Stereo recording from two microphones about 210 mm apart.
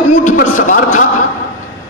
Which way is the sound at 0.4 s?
40° left (ahead or behind).